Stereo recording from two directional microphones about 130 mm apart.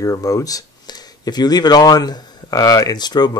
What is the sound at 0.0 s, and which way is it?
Speech, 25° left (ahead or behind).